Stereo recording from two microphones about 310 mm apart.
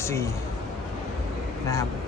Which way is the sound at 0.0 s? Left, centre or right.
Centre.